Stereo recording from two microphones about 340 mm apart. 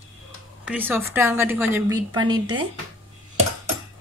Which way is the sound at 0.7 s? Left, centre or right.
Centre.